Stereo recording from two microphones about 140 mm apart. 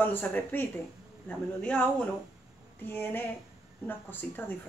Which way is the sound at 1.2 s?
10° left (ahead or behind).